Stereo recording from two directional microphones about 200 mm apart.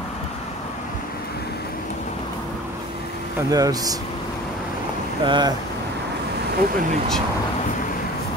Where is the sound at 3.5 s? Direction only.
20° right (ahead or behind).